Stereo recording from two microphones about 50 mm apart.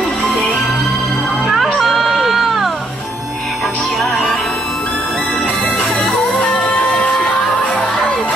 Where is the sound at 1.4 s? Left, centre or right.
Centre.